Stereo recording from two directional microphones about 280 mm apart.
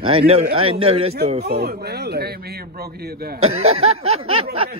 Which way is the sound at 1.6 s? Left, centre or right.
Right.